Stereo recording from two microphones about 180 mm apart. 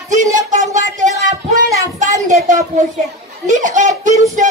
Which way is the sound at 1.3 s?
20° right (ahead or behind).